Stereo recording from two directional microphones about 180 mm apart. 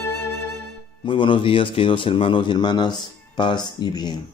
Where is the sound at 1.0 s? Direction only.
30° left (ahead or behind).